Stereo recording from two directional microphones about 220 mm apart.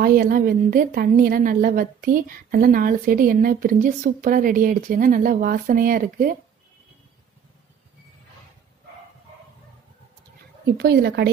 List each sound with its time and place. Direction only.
0.0 s a woman's voice: 40° right (ahead or behind)
10.8 s speech: 45° right (ahead or behind)